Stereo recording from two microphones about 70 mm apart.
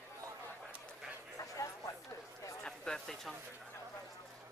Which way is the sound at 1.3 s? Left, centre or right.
Left.